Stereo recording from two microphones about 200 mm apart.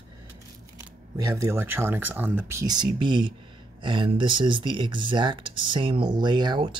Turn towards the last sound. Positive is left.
turn(degrees=-20)  # may be behind; listen again after turning